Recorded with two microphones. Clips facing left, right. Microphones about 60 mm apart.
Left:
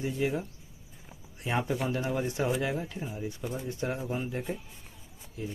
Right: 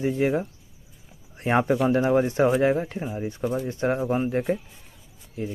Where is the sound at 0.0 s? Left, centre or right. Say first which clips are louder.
Right 7 dB; right.